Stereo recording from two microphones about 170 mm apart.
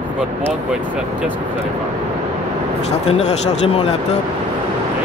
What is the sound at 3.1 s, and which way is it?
Speech, 35° left (ahead or behind).